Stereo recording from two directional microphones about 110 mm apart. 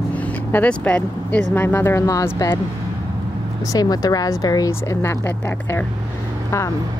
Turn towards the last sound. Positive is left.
turn(degrees=25)  # may be behind; listen again after turning